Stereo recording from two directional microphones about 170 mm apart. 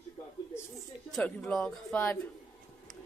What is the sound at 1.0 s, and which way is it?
A woman's voice, 5° left (ahead or behind).